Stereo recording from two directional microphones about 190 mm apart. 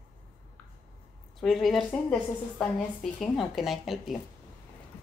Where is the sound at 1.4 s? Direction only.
Centre (ahead or behind).